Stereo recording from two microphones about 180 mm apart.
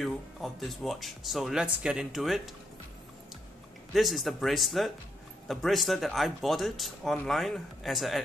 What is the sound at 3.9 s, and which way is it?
Speech, centre (ahead or behind).